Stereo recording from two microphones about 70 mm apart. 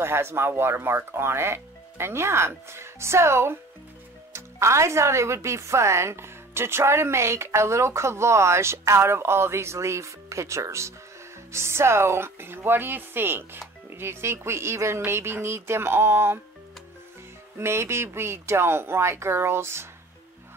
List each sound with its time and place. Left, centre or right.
0.0 s speech: right
17.6 s speech: right